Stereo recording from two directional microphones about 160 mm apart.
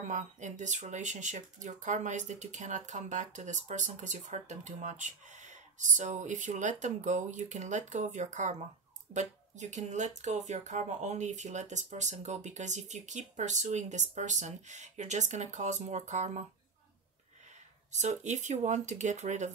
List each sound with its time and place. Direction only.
0.1 s speech: 50° right (ahead or behind)
17.9 s speech: 45° right (ahead or behind)